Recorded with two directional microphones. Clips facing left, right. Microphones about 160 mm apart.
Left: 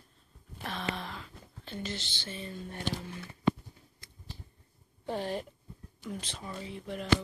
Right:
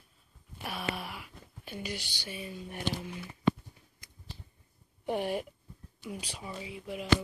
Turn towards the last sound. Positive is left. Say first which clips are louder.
# even
turn(degrees=-5)  # may be behind; listen again after turning